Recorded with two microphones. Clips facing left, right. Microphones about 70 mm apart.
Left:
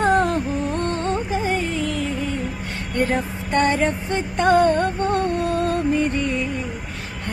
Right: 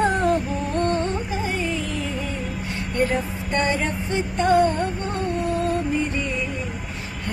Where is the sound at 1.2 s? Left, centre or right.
Left.